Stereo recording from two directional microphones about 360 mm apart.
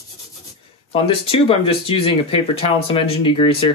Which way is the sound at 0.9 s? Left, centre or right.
Centre.